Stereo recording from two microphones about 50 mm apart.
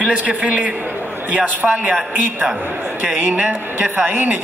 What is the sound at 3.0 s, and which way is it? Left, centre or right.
Speech, right.